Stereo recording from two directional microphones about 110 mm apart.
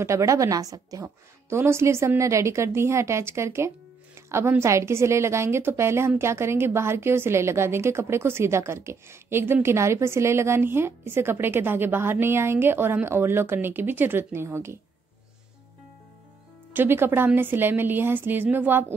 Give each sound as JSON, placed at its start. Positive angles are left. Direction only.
{"t": 0.0, "sound": "a woman's voice", "side_deg": -30}
{"t": 16.7, "sound": "a woman's voice", "side_deg": -20}